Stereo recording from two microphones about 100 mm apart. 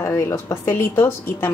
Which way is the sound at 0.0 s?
30° left (ahead or behind).